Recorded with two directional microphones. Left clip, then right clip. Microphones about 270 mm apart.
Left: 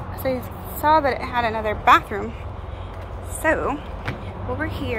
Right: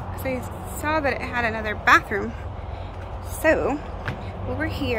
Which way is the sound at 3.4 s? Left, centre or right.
Centre.